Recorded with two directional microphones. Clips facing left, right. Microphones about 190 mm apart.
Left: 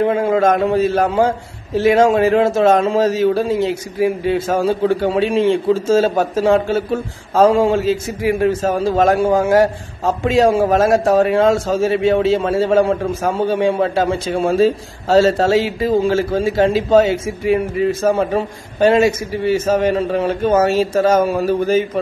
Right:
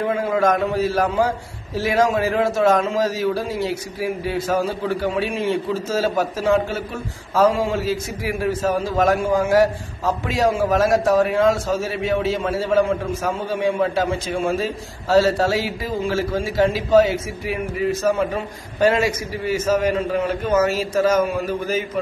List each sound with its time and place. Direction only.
0.0 s a man's voice: 25° left (ahead or behind)